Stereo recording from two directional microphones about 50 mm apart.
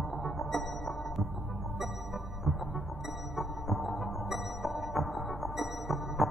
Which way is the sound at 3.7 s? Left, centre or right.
Left.